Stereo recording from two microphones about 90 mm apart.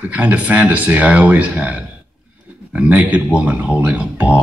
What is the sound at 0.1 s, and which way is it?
Speech, 20° right (ahead or behind).